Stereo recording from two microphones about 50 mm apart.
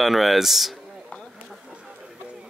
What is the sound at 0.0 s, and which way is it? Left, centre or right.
Speech, centre.